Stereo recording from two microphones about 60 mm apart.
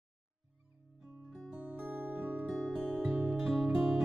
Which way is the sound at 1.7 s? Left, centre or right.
Right.